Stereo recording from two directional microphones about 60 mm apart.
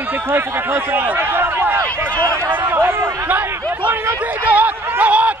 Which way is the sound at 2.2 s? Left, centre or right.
Right.